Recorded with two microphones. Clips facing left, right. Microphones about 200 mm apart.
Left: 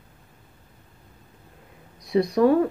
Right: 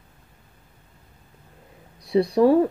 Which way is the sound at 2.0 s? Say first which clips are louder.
Right 1 dB; 30° right (ahead or behind).